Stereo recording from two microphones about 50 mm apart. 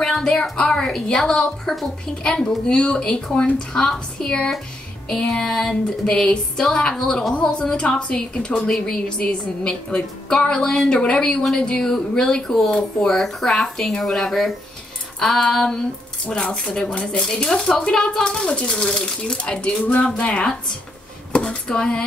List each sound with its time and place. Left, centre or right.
0.0 s speech: centre
5.1 s speech: centre; by 8.5 s left
8.5 s speech: centre
15.1 s female singing: centre
15.5 s speech: centre